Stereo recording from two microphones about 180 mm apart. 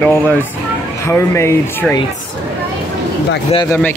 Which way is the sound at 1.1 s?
15° left (ahead or behind).